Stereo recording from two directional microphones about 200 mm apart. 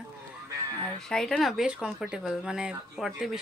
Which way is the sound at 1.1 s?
Centre (ahead or behind).